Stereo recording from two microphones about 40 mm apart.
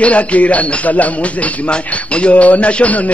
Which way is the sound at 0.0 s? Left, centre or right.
Left.